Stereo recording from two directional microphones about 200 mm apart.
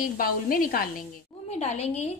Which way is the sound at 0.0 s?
45° left (ahead or behind).